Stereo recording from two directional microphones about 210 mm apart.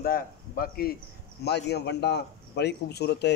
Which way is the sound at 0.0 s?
45° left (ahead or behind).